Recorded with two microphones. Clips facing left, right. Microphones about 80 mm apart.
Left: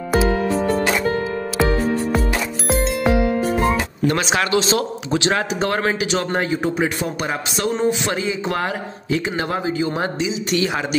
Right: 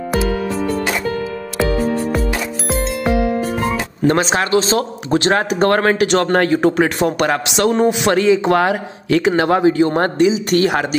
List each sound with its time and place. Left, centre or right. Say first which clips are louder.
2.7 s music: left 1 dB; centre
4.1 s speech: right 4 dB; right